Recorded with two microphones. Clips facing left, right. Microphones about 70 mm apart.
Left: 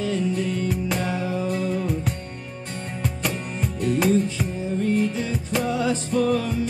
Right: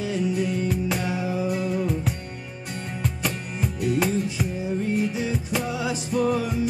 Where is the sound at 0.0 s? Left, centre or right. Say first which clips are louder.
Left 1 dB; centre.